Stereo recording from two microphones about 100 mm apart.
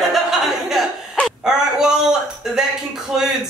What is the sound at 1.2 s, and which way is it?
Speech, 5° right (ahead or behind).